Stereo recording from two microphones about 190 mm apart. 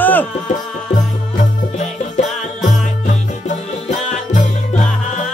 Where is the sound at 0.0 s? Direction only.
10° left (ahead or behind).